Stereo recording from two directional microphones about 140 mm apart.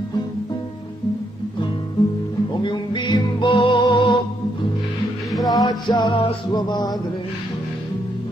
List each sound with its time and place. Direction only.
2.5 s music: 35° left (ahead or behind)
5.3 s music: centre (ahead or behind)
5.7 s music: 30° left (ahead or behind)